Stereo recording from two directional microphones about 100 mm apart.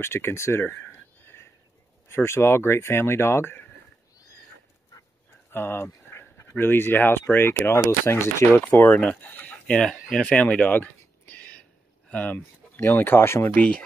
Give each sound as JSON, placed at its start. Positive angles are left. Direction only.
{"t": 0.0, "sound": "a sound", "side_deg": 25}
{"t": 2.0, "sound": "speech", "side_deg": 25}
{"t": 5.5, "sound": "speech", "side_deg": 20}
{"t": 9.8, "sound": "a sound", "side_deg": 5}
{"t": 12.1, "sound": "speech", "side_deg": 15}
{"t": 13.6, "sound": "speech", "side_deg": 10}